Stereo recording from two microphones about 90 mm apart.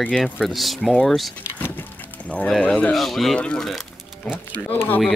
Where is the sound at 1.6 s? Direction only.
20° left (ahead or behind).